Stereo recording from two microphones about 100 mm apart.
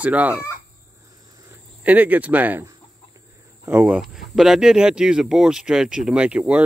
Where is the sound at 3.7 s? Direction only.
20° right (ahead or behind).